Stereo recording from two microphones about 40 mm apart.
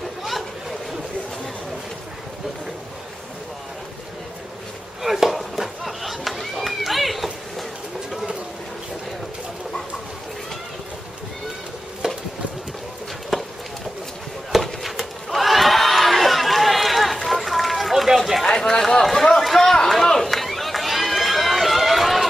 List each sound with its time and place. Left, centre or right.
5.0 s chop: centre
12.0 s chopping: centre
13.3 s clip-clop: centre
14.5 s a sound: centre
18.4 s run: centre